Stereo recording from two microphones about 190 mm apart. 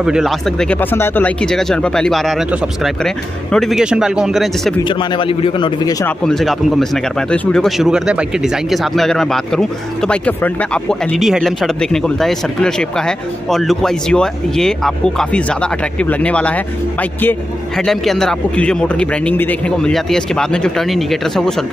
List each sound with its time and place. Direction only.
0.0 s speech: centre (ahead or behind)
4.8 s a man's voice: 25° left (ahead or behind)
6.0 s speech: centre (ahead or behind)